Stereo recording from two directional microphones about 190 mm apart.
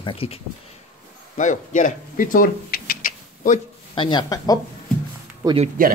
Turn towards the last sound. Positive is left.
turn(degrees=-30)  # may be behind; listen again after turning